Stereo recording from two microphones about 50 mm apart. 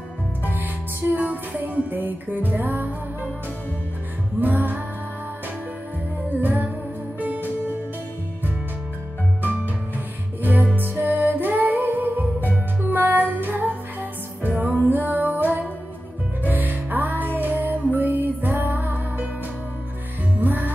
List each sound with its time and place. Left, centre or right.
0.4 s music: right
4.4 s music: right
6.4 s music: right
9.9 s music: right
20.3 s music: right